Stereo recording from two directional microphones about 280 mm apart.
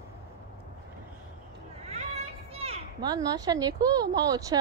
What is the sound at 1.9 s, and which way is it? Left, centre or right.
Children playing, right.